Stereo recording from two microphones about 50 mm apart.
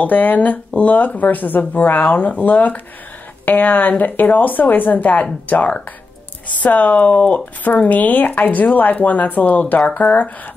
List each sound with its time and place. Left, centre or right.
0.0 s speech: left